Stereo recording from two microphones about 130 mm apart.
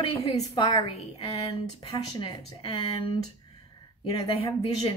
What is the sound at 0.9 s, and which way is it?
Speech, 50° left (ahead or behind).